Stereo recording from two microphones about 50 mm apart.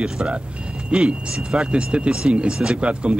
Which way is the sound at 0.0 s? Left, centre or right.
Centre.